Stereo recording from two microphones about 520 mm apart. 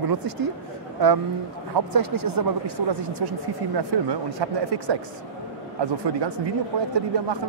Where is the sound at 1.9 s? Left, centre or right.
Right.